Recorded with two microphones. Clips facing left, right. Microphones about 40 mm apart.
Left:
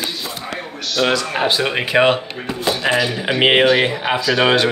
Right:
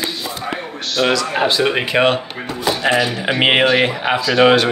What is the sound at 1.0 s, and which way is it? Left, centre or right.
Speech, centre.